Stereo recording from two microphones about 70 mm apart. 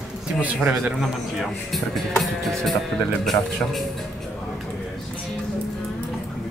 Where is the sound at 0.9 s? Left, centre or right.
Centre.